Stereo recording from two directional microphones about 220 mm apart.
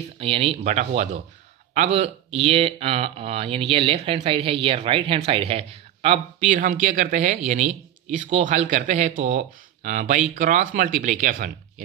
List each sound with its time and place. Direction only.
0.2 s speech: 25° right (ahead or behind)